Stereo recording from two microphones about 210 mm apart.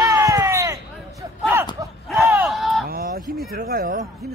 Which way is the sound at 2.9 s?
45° right (ahead or behind).